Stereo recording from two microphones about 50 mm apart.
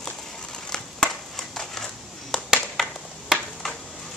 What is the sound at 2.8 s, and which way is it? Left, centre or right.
Finger snapping, centre.